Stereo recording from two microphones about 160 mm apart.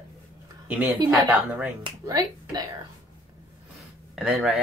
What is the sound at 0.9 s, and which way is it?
A woman's voice, 20° right (ahead or behind).